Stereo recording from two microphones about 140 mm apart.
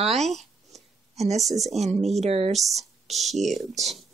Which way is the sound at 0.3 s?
Centre (ahead or behind).